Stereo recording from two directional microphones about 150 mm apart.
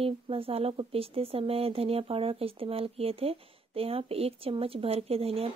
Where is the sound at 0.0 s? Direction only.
40° right (ahead or behind).